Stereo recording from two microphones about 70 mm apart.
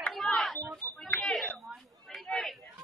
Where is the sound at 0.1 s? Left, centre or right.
Centre.